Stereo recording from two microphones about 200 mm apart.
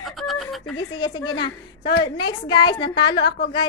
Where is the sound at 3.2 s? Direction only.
55° left (ahead or behind).